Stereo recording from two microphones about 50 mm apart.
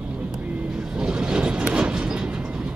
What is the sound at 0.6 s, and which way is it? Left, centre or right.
Vehicle, centre.